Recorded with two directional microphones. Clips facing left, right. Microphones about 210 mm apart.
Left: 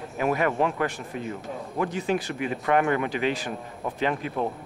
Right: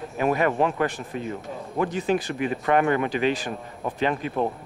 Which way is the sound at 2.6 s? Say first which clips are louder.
Right 1 dB; 30° right (ahead or behind).